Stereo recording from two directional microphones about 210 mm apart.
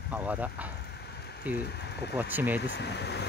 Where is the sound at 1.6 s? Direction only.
50° left (ahead or behind).